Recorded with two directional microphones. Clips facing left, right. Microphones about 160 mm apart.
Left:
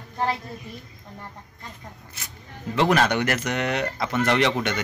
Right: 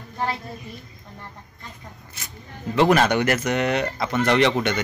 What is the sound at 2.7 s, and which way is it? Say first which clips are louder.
Speech: right 3 dB; 5° right (ahead or behind).